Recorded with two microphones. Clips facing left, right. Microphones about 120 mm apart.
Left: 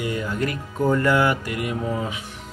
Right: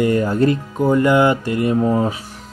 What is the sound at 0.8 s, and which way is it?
Speech, 20° right (ahead or behind).